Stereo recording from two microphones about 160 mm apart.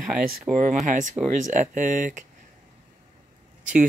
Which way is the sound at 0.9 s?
50° right (ahead or behind).